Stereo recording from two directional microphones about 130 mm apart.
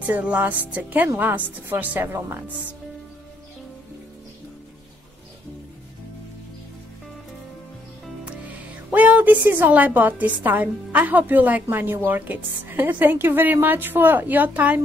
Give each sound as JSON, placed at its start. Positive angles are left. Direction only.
{"t": 0.0, "sound": "a woman's voice", "side_deg": -10}
{"t": 8.3, "sound": "a woman's voice", "side_deg": -10}